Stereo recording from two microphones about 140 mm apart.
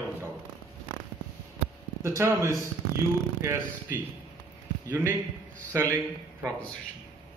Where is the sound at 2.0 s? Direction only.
20° right (ahead or behind).